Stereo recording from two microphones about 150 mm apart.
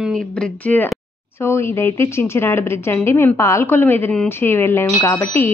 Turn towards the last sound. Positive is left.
turn(degrees=15)  # may be behind; listen again after turning